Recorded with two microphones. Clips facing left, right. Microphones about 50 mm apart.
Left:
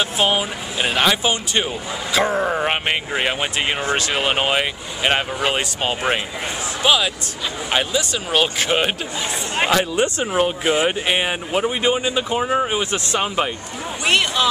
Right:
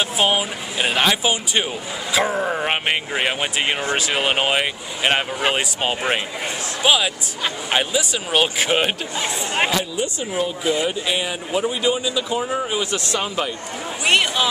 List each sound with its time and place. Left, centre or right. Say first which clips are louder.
0.0 s speech: even; centre
9.7 s speech: left 5 dB; left
10.9 s speech: left 3 dB; left
14.0 s speech: even; centre